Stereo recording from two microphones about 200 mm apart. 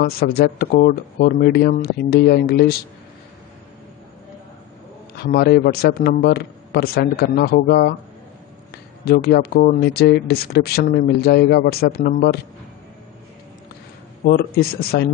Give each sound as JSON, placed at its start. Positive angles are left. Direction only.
{"t": 0.0, "sound": "speech", "side_deg": 50}
{"t": 5.1, "sound": "speech", "side_deg": 50}
{"t": 14.2, "sound": "speech", "side_deg": 50}